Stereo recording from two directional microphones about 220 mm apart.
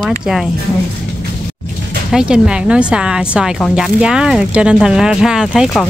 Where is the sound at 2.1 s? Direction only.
5° right (ahead or behind).